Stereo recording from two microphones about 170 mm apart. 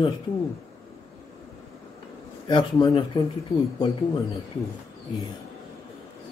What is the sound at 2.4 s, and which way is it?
Speech, 25° left (ahead or behind).